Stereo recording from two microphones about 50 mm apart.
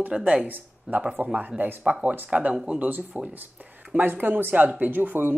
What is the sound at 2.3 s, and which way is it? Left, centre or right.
Speech, right.